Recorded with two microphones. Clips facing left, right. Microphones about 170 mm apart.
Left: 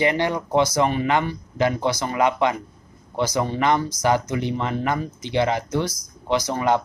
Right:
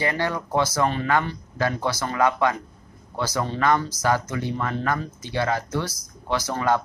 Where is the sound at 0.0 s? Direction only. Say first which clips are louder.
Left 4 dB; 20° left (ahead or behind).